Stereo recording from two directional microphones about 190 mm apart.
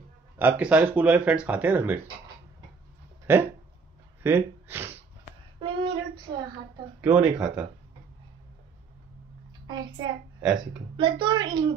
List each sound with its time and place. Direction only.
0.4 s speech: 10° right (ahead or behind)
3.3 s speech: 10° right (ahead or behind)
5.6 s a sound: 25° right (ahead or behind)
7.0 s speech: 10° right (ahead or behind)
9.7 s a child's voice: 20° right (ahead or behind)